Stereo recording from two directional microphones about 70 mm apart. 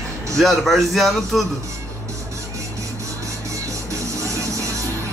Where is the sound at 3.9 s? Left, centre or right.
Right.